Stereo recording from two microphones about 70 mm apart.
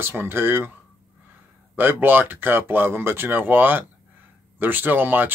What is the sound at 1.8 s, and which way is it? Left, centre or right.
Speech, right.